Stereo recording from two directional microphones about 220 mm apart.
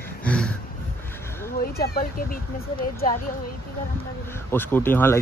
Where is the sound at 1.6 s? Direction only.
45° left (ahead or behind).